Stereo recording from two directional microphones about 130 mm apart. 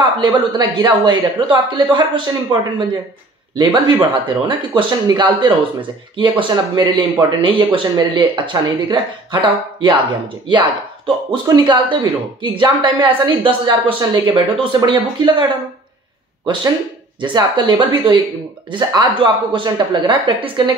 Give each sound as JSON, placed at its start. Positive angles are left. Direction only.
{"t": 0.0, "sound": "speech", "side_deg": -40}
{"t": 17.2, "sound": "speech", "side_deg": -35}